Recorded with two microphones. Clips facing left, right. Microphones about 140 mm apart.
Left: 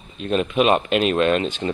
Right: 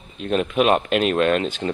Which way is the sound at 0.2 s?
5° right (ahead or behind).